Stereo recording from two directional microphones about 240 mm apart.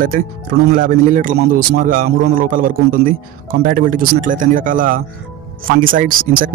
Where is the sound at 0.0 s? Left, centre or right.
Right.